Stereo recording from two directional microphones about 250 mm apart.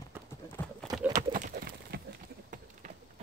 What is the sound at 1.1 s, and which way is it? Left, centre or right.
Pigeon, right.